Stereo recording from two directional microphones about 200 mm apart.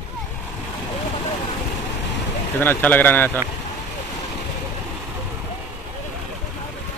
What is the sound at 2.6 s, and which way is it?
Speech, 10° left (ahead or behind).